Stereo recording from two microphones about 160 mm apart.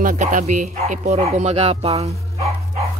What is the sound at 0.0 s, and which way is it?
Speech, 55° right (ahead or behind).